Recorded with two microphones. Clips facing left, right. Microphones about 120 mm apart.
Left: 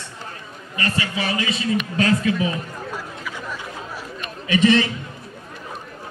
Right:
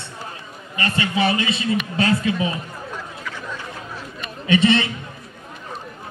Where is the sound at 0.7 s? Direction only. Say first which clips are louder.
Right 3 dB; 25° right (ahead or behind).